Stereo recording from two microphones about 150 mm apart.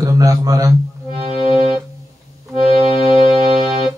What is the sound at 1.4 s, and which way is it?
Music, 45° right (ahead or behind).